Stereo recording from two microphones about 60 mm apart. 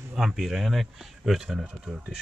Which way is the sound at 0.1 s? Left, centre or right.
Centre.